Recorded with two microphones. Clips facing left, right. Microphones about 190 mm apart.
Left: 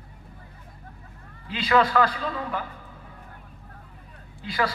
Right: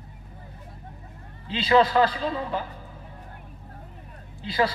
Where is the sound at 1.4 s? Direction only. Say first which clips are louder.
Right 2 dB; 25° right (ahead or behind).